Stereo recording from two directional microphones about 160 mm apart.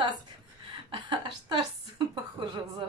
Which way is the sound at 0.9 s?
30° right (ahead or behind).